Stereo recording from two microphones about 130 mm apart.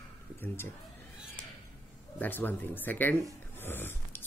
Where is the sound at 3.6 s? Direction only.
15° left (ahead or behind).